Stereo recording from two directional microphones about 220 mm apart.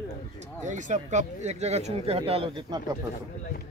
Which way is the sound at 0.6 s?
35° right (ahead or behind).